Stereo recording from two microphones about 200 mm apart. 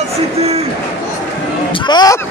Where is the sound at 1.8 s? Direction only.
20° left (ahead or behind).